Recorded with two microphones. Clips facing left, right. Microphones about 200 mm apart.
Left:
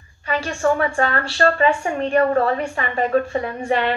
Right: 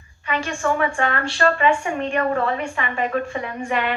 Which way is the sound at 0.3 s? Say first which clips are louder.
Left 3 dB; 35° left (ahead or behind).